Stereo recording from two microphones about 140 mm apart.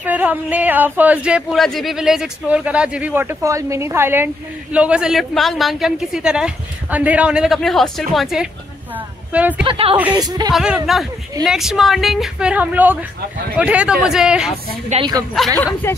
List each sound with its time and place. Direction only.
0.0 s a woman's voice: 10° right (ahead or behind)
9.7 s speech: 40° right (ahead or behind)
10.1 s speech: 30° right (ahead or behind)
10.5 s a woman's voice: 5° right (ahead or behind)
14.9 s a woman's voice: 55° right (ahead or behind)
15.4 s a woman's voice: centre (ahead or behind)
15.8 s speech: 15° left (ahead or behind)